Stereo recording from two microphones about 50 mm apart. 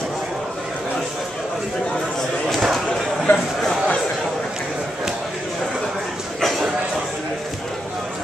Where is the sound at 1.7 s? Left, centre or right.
Centre.